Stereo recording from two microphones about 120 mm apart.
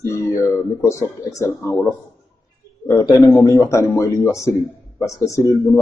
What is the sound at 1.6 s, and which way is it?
A man's voice, 25° left (ahead or behind).